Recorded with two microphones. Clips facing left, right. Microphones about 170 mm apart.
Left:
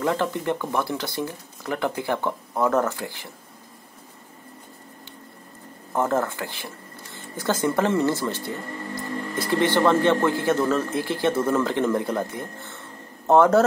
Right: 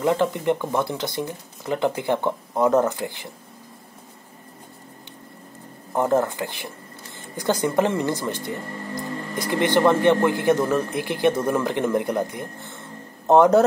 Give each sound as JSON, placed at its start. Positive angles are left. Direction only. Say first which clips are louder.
{"t": 0.0, "sound": "speech", "louder": "right 3 dB", "side_deg": -20}
{"t": 5.9, "sound": "a man's voice", "louder": "right 3 dB", "side_deg": -15}